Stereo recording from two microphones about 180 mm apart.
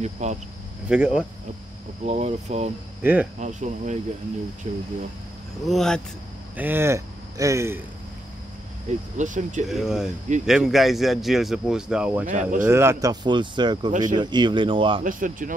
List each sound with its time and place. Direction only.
0.0 s speech: 40° right (ahead or behind)
0.8 s speech: 5° right (ahead or behind)
2.0 s speech: 35° right (ahead or behind)
3.0 s cricket: 10° right (ahead or behind)
3.3 s speech: 40° right (ahead or behind)
5.7 s speech: 5° left (ahead or behind)
6.5 s speech: 10° right (ahead or behind)
9.1 s speech: 45° right (ahead or behind)
9.7 s speech: centre (ahead or behind)
12.3 s speech: 45° right (ahead or behind)
12.6 s speech: 15° right (ahead or behind)
15.0 s speech: 50° right (ahead or behind)